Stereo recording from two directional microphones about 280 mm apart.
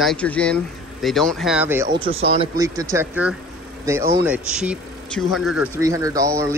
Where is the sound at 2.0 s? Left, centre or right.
Centre.